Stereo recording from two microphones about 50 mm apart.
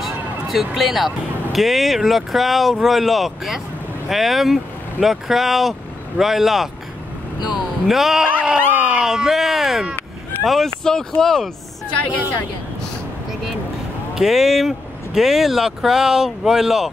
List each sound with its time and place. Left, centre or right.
0.0 s speech: centre
8.5 s a sound: right
9.1 s a sound: centre
10.4 s speech: centre
10.8 s speech: centre
14.1 s speech: centre